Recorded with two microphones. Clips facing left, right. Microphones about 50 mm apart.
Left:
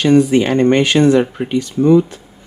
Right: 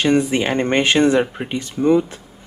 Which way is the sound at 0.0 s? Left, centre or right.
Right.